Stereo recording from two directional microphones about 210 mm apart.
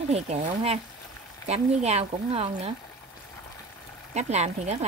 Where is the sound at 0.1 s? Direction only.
30° right (ahead or behind).